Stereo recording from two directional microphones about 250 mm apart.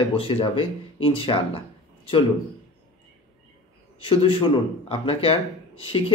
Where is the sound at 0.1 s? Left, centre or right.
Left.